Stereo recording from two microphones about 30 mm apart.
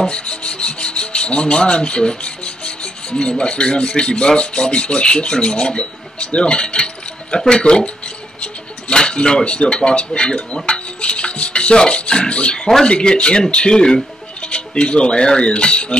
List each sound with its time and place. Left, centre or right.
0.1 s rub: left
3.1 s rub: left
6.1 s keys jangling: left
7.4 s rub: left
8.9 s speech: left
12.5 s speech: centre
12.8 s rub: left
13.5 s speech: left
14.4 s rub: left